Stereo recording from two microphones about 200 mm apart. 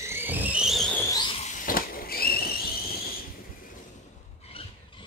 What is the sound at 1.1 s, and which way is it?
Squeal, 25° left (ahead or behind).